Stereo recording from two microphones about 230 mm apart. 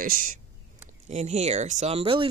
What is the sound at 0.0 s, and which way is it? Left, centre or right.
Speech, right.